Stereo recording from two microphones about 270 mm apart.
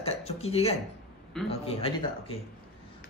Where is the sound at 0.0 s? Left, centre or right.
Left.